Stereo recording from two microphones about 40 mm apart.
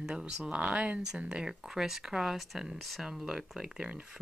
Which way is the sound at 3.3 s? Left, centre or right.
Centre.